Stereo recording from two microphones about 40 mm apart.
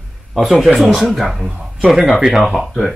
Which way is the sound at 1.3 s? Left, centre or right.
Centre.